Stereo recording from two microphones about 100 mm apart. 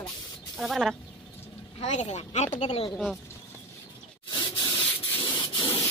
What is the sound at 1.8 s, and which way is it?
Speech, 85° left.